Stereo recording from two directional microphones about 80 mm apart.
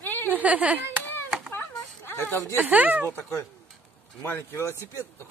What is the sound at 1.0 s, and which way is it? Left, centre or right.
Chop, left.